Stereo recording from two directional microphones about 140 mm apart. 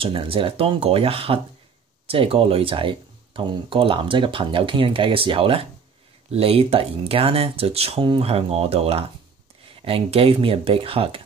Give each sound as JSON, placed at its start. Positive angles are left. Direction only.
{"t": 0.0, "sound": "speech", "side_deg": -40}